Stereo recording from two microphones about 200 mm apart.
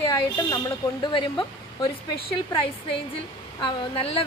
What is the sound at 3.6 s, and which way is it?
Speech, 25° left (ahead or behind).